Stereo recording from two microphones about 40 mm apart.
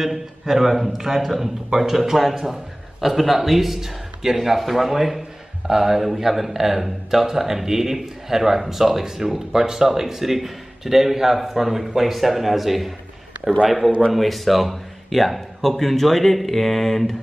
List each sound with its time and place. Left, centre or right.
0.0 s a man's voice: centre